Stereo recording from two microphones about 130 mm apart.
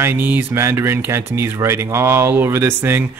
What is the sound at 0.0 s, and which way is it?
A man's voice, 15° right (ahead or behind).